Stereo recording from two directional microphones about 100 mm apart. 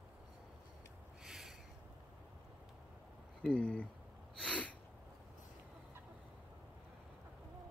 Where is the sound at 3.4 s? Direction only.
10° left (ahead or behind).